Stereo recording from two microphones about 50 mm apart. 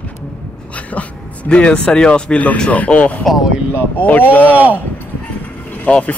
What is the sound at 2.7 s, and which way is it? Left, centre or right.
Speech, left.